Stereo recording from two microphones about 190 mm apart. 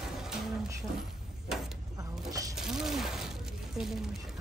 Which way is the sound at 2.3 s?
15° right (ahead or behind).